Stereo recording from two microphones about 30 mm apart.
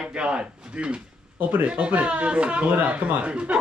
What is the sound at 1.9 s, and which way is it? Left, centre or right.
Speech, right.